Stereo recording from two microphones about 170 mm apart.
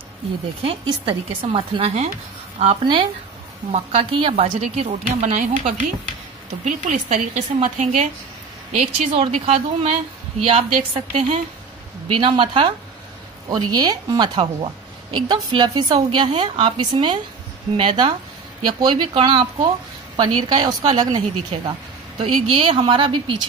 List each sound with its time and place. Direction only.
0.6 s a woman's voice: 30° right (ahead or behind)
6.6 s a woman's voice: 45° right (ahead or behind); by 23.3 s 30° right (ahead or behind)